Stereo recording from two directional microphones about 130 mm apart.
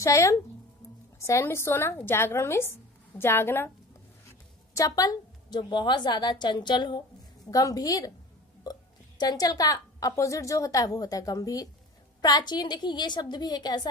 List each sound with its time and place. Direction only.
0.0 s a woman's voice: 20° left (ahead or behind)
4.7 s a woman's voice: 25° left (ahead or behind)
9.2 s a woman's voice: 30° left (ahead or behind)